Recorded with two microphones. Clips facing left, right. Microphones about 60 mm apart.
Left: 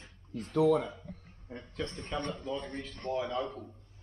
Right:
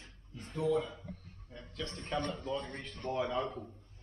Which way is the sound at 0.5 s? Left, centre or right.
Left.